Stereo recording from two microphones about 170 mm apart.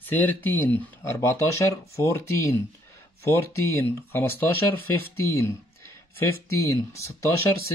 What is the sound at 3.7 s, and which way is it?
Speech, 15° left (ahead or behind).